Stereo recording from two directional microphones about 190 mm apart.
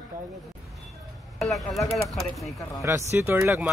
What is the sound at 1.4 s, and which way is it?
Speech, centre (ahead or behind).